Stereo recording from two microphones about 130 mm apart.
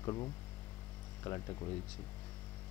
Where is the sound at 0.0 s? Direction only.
30° left (ahead or behind).